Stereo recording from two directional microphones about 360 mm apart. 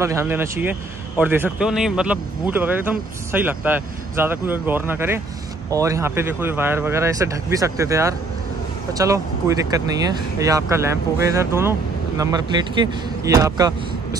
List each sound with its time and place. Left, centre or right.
0.0 s speech: centre